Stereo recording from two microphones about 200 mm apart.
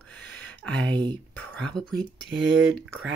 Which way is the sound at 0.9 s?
25° right (ahead or behind).